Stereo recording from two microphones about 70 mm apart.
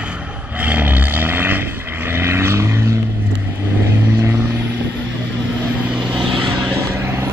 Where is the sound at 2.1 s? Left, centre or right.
Right.